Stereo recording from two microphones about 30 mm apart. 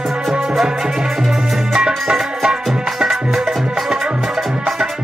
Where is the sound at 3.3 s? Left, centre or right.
Centre.